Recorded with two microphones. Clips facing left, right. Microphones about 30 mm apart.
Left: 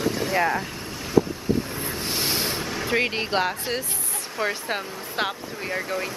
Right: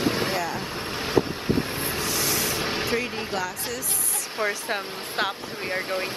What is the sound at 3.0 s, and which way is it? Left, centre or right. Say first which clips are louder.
Speech: left 5 dB; left.